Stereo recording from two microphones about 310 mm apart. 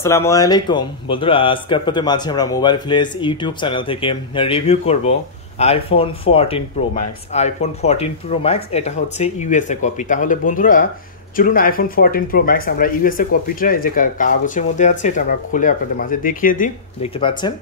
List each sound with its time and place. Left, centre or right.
0.0 s speech: centre